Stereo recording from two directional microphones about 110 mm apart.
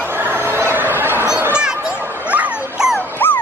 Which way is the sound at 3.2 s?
20° left (ahead or behind).